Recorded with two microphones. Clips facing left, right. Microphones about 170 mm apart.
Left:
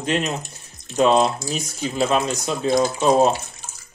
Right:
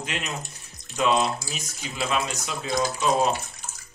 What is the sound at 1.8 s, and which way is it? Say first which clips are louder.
Speech: left 7 dB; 40° left (ahead or behind).